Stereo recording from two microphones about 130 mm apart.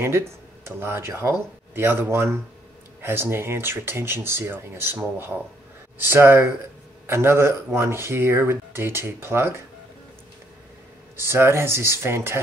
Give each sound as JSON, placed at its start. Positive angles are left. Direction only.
{"t": 0.7, "sound": "speech", "side_deg": -20}
{"t": 11.1, "sound": "speech", "side_deg": -20}